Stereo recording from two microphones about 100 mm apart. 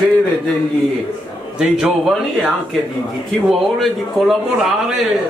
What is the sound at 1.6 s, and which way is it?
A man's voice, 5° right (ahead or behind).